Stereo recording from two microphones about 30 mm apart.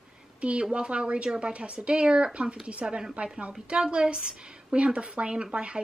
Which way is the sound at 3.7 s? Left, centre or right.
Right.